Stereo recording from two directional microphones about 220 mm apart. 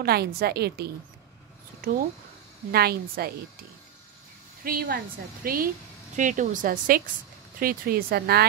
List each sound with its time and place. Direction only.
0.0 s a woman's voice: 45° right (ahead or behind)
4.6 s a woman's voice: 45° right (ahead or behind)